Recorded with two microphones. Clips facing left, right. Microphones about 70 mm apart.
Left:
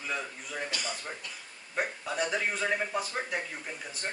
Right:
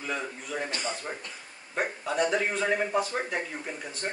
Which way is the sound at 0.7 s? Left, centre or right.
Right.